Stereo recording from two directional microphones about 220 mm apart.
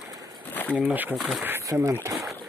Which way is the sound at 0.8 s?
10° right (ahead or behind).